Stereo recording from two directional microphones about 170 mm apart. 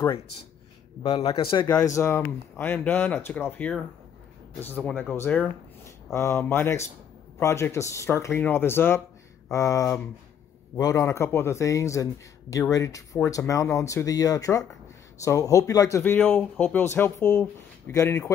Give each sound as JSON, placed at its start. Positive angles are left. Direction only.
{"t": 1.0, "sound": "speech", "side_deg": 25}